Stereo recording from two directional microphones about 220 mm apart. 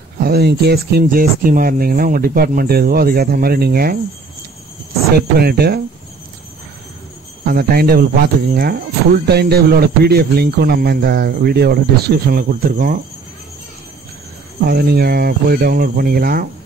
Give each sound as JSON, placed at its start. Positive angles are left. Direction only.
{"t": 0.2, "sound": "speech", "side_deg": -45}
{"t": 5.1, "sound": "speech", "side_deg": -45}
{"t": 7.4, "sound": "speech", "side_deg": -45}
{"t": 14.7, "sound": "speech", "side_deg": -45}